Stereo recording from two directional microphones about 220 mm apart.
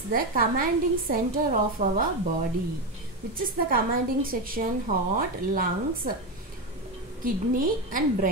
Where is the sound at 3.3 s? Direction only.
40° right (ahead or behind).